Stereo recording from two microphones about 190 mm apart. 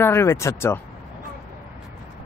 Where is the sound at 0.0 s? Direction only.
15° left (ahead or behind).